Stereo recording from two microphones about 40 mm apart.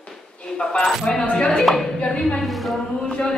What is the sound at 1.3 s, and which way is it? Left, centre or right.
Speech, left.